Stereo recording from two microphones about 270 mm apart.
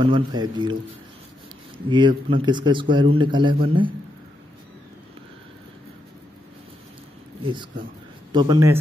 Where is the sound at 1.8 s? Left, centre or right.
Centre.